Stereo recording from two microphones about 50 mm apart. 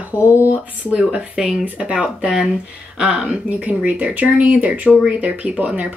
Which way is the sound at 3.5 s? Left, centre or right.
Right.